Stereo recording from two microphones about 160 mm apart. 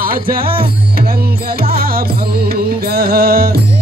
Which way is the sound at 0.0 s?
65° right (ahead or behind).